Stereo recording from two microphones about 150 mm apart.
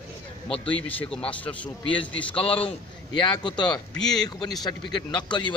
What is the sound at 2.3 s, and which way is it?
Speech, 40° left (ahead or behind).